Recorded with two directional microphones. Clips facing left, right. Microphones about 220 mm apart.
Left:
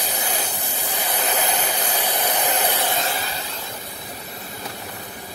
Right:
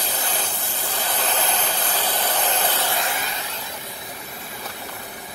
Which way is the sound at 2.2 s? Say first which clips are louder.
Left 2 dB; 15° left (ahead or behind).